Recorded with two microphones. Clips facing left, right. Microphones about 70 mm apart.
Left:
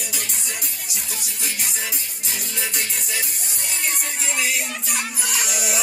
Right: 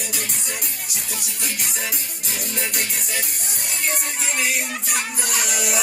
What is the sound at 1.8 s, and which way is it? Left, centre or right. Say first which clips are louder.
Music: right 1 dB; right.